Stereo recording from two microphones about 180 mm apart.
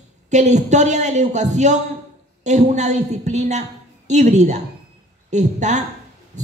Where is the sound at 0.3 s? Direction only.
40° right (ahead or behind).